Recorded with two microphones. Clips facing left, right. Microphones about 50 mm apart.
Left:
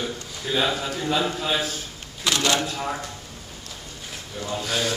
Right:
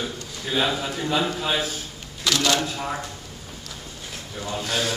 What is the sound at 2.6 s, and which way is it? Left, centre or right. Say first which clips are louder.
Speech: even; centre.